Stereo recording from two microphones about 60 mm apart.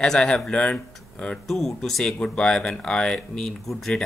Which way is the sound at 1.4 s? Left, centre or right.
Centre.